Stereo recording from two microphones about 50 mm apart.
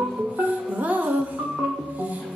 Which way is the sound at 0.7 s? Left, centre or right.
Right.